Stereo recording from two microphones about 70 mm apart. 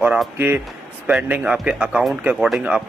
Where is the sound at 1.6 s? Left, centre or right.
Centre.